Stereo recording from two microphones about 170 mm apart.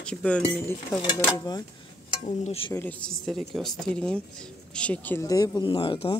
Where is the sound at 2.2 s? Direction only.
35° left (ahead or behind).